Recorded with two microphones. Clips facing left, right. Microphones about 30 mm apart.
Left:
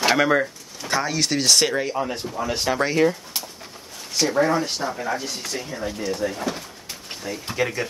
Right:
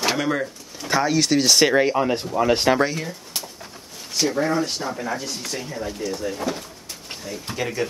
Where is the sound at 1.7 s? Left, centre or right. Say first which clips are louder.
Right 6 dB; right.